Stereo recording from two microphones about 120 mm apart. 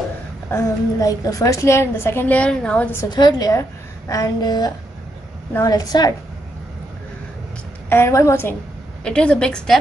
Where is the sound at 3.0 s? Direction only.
35° left (ahead or behind).